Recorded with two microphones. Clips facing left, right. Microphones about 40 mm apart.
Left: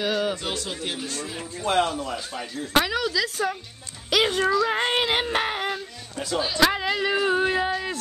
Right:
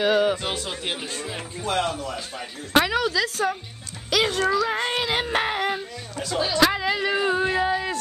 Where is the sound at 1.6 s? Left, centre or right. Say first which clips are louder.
Left 3 dB; centre.